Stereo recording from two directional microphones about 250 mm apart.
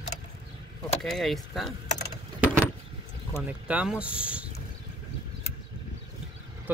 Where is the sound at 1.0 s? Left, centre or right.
Centre.